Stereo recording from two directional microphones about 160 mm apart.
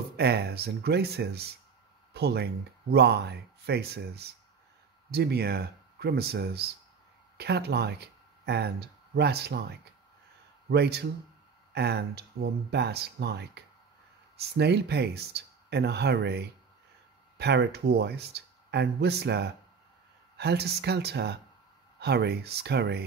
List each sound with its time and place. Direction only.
0.2 s speech: 90° right